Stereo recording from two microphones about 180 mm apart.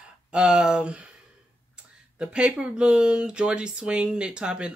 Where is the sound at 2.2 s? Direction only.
5° right (ahead or behind).